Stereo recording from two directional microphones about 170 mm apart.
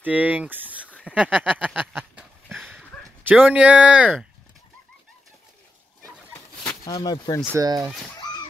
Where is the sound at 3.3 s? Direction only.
10° right (ahead or behind).